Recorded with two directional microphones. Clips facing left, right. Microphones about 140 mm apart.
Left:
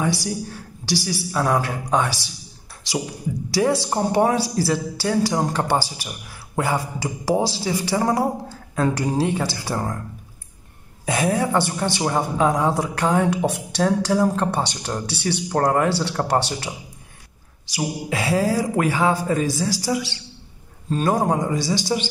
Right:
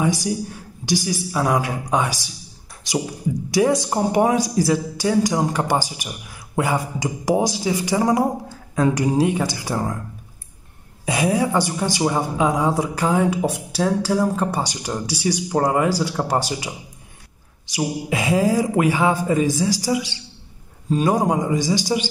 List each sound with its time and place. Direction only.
0.0 s speech: 15° right (ahead or behind)
3.7 s speech: 15° right (ahead or behind)
11.1 s speech: 10° right (ahead or behind)